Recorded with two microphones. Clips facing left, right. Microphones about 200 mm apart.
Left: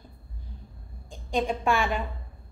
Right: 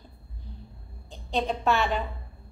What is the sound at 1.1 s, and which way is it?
Speech, 10° left (ahead or behind).